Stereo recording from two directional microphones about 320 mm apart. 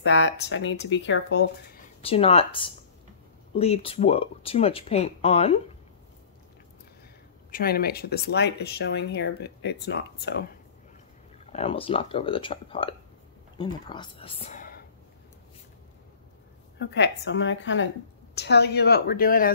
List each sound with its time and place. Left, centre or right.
0.0 s speech: left
2.0 s speech: centre
7.5 s speech: left
11.5 s speech: centre
16.7 s speech: left